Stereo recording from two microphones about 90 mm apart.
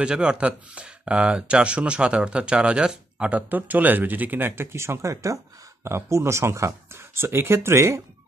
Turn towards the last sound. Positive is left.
turn(degrees=-30)  # may be behind; listen again after turning